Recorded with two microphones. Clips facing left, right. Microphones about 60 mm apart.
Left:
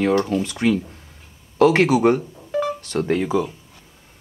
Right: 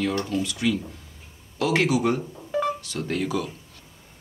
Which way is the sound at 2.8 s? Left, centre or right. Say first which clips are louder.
Left 8 dB; left.